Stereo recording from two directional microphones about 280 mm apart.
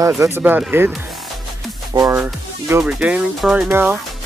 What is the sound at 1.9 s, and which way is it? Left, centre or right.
Speech, centre.